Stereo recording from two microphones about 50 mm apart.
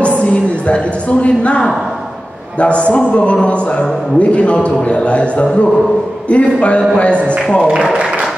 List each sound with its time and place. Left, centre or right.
0.0 s a sound: left
1.2 s a man's voice: left
7.6 s speech: centre